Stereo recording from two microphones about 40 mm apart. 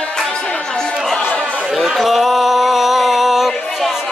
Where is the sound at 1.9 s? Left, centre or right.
Centre.